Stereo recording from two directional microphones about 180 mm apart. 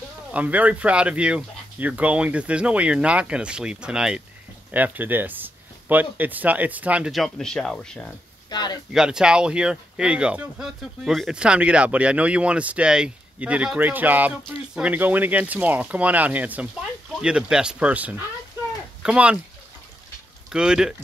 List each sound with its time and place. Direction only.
0.3 s speech: 10° right (ahead or behind)
8.5 s speech: 25° left (ahead or behind)
8.9 s speech: 5° right (ahead or behind)
20.5 s speech: 5° right (ahead or behind)